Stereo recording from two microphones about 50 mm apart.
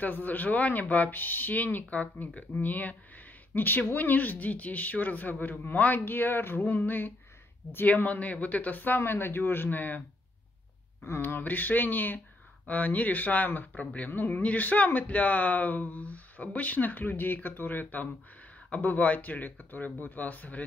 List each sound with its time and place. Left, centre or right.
0.0 s speech: left
9.0 s speech: left
11.1 s speech: left